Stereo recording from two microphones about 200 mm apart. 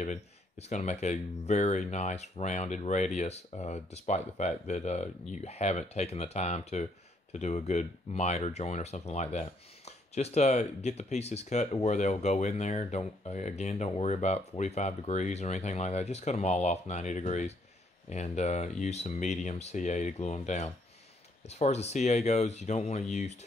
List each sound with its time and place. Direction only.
0.0 s speech: 35° left (ahead or behind)